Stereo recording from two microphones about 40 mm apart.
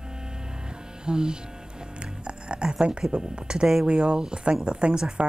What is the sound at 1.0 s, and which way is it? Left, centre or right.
Speech, right.